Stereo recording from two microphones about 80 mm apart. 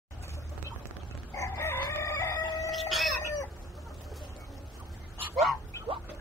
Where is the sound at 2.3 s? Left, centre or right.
Left.